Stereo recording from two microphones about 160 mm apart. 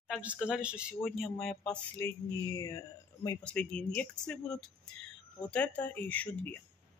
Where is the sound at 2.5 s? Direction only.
20° left (ahead or behind).